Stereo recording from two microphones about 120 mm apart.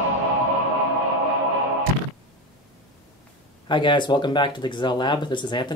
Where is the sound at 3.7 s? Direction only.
40° left (ahead or behind).